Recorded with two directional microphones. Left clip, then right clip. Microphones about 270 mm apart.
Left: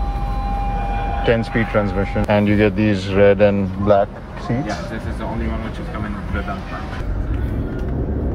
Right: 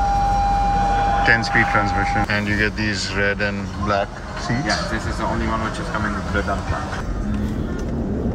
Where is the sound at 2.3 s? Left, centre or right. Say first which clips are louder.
Left 4 dB; centre.